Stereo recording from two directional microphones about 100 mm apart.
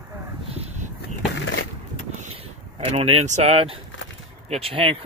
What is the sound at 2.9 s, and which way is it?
Speech, 90° right.